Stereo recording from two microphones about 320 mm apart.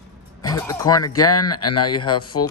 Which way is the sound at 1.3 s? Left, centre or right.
Left.